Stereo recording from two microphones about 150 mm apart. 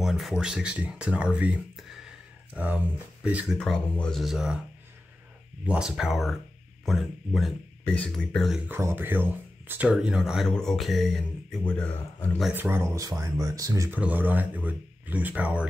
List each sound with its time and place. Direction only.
0.0 s speech: centre (ahead or behind)
3.5 s speech: 5° left (ahead or behind)
5.7 s speech: 5° right (ahead or behind)
8.6 s speech: 15° right (ahead or behind); by 12.3 s 10° left (ahead or behind)
12.5 s speech: 15° right (ahead or behind)